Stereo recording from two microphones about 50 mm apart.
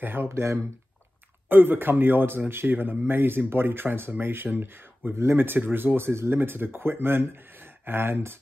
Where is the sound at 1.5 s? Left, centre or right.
Right.